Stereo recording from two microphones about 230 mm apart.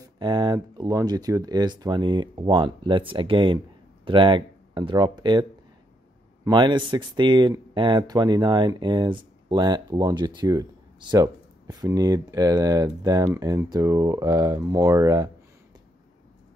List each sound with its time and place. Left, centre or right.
0.0 s speech: centre